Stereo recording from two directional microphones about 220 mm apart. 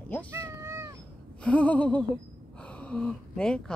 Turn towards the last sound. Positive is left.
turn(degrees=5)  # may be behind; listen again after turning